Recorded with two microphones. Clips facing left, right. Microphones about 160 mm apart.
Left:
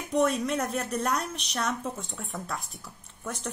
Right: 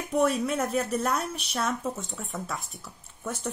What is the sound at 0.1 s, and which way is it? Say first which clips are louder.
A woman's voice: even; 5° right (ahead or behind).